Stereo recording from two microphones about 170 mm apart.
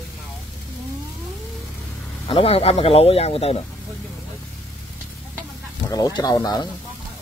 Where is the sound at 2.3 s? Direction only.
35° left (ahead or behind).